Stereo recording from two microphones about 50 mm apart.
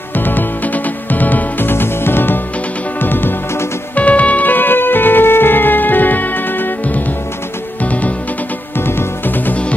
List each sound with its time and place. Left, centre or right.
0.1 s music: left
3.9 s music: left
8.7 s music: left